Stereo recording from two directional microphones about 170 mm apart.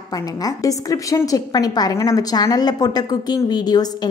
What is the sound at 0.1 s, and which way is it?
A woman's voice, 20° left (ahead or behind).